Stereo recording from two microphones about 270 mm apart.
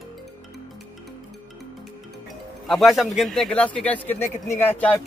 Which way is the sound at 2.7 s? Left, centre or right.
Centre.